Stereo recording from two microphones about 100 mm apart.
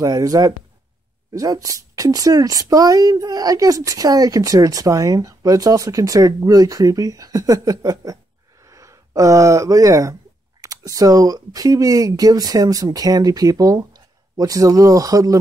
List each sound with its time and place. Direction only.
0.0 s speech: 35° right (ahead or behind)